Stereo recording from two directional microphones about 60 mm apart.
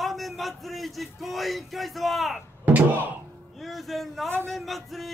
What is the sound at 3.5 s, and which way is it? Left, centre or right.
A man's voice, centre.